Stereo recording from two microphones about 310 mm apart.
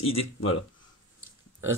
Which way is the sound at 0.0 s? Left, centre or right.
Centre.